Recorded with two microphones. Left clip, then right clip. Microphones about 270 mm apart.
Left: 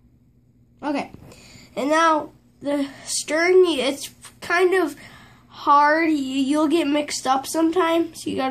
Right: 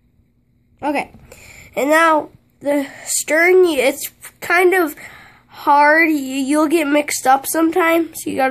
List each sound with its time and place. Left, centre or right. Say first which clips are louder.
0.7 s speech: right 6 dB; right